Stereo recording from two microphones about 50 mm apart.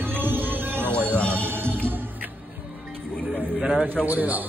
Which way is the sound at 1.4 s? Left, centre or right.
Right.